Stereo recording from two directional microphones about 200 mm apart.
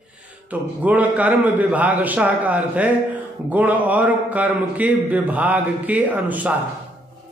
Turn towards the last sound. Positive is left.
turn(degrees=-10)  # may be behind; listen again after turning